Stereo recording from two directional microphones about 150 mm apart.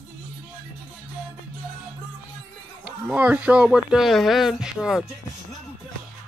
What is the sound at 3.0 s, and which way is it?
Speech, 10° right (ahead or behind).